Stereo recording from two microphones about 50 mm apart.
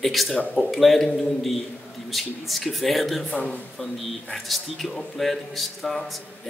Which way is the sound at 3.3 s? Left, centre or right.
Left.